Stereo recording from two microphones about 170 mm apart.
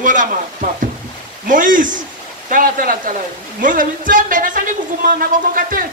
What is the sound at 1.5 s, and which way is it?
Speech, 50° right (ahead or behind).